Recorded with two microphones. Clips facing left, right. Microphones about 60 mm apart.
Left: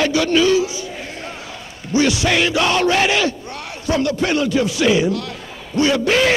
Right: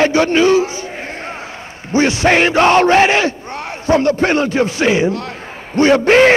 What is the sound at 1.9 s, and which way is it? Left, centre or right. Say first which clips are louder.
Battle cry: right 4 dB; right.